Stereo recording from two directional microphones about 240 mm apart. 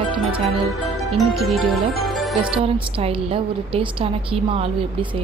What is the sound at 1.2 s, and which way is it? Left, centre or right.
Music, centre.